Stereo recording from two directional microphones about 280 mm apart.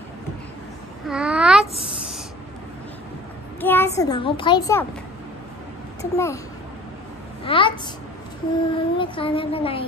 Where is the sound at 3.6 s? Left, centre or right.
Centre.